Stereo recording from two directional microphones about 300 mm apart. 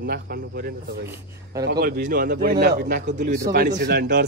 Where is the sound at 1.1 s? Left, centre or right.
Centre.